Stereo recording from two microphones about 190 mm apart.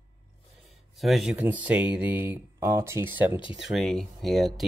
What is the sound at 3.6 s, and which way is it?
Speech, centre (ahead or behind).